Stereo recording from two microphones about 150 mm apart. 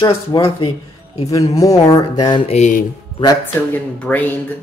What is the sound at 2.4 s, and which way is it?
Speech, 50° left (ahead or behind).